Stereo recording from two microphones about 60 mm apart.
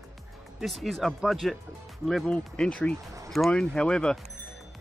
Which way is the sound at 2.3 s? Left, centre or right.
Centre.